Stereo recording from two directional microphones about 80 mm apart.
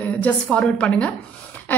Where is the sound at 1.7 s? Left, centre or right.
Left.